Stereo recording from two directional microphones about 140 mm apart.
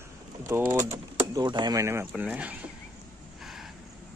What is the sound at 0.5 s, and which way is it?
Speech, 20° right (ahead or behind).